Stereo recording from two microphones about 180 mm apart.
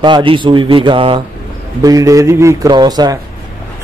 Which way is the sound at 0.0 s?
25° right (ahead or behind).